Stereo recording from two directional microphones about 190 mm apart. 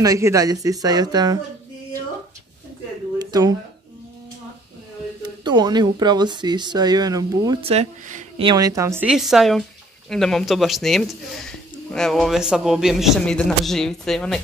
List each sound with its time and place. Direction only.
0.0 s speech: 15° right (ahead or behind)
3.2 s a sound: 20° right (ahead or behind)
5.2 s speech: 25° right (ahead or behind)
7.6 s speech: 35° right (ahead or behind); by 9.0 s 15° right (ahead or behind)
9.0 s a man's voice: centre (ahead or behind)